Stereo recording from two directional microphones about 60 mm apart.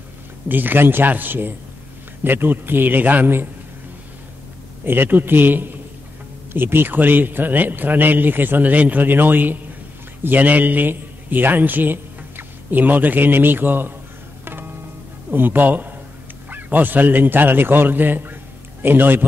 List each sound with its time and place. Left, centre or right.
0.5 s a man's voice: right
4.8 s a man's voice: right
14.4 s music: right
15.3 s a man's voice: right